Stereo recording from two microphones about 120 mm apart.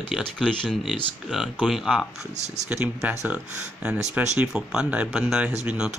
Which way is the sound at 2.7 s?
15° right (ahead or behind).